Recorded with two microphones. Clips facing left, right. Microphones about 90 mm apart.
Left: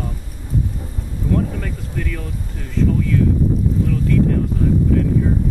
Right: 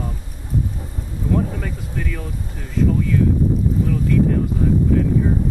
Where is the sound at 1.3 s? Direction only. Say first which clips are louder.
Even; 5° right (ahead or behind).